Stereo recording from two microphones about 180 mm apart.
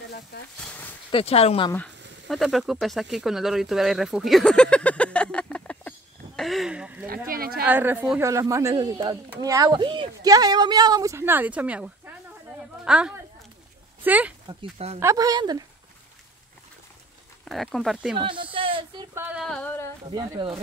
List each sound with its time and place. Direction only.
0.6 s speech: 5° left (ahead or behind)
1.1 s speech: 35° left (ahead or behind)
2.2 s speech: centre (ahead or behind)
7.2 s a woman's voice: 55° right (ahead or behind)
7.6 s a woman's voice: 10° right (ahead or behind)
14.5 s speech: 30° right (ahead or behind)
15.0 s a woman's voice: 15° right (ahead or behind)
17.5 s speech: centre (ahead or behind)
18.2 s a woman's voice: 30° right (ahead or behind)
19.1 s speech: 5° right (ahead or behind)
20.1 s a woman's voice: 25° right (ahead or behind)